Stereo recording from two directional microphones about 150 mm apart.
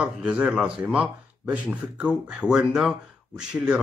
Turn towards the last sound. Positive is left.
turn(degrees=-5)  # may be behind; listen again after turning